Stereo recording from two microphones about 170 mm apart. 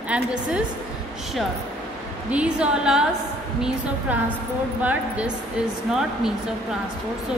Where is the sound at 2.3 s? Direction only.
5° right (ahead or behind).